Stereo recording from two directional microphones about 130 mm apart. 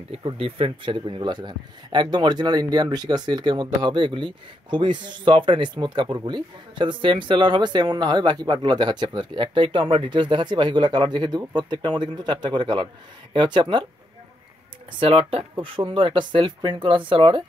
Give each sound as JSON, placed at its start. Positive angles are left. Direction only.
{"t": 0.1, "sound": "speech", "side_deg": -45}
{"t": 14.9, "sound": "speech", "side_deg": -45}